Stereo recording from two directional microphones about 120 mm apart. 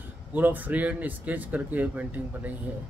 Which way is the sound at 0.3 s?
15° right (ahead or behind).